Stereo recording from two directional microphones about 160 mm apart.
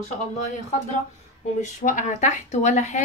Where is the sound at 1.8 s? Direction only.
50° left (ahead or behind).